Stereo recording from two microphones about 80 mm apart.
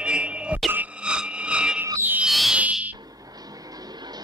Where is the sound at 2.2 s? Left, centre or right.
Centre.